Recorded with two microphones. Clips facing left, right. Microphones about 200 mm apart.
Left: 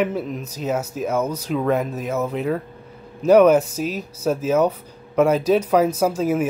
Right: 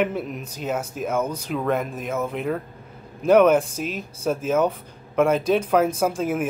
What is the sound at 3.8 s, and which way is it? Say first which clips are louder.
Speech: left 4 dB; 40° left (ahead or behind).